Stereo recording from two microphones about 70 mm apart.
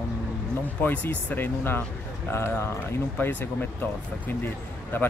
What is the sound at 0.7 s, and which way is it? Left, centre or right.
Speech, left.